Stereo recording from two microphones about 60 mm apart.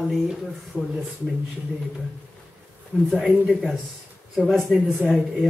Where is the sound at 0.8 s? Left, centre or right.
Centre.